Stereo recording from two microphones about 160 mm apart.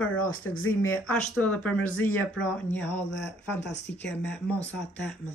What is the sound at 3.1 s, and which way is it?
Speech, 90° left.